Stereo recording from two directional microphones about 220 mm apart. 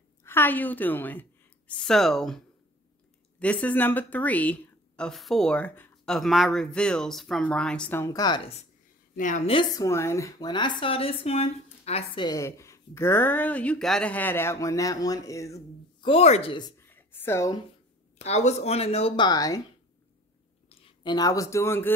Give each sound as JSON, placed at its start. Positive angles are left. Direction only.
{"t": 0.2, "sound": "a woman's voice", "side_deg": 10}
{"t": 9.1, "sound": "a woman's voice", "side_deg": 35}
{"t": 9.6, "sound": "speech", "side_deg": 15}
{"t": 12.3, "sound": "speech", "side_deg": 15}
{"t": 18.2, "sound": "speech", "side_deg": 30}
{"t": 20.6, "sound": "speech", "side_deg": 20}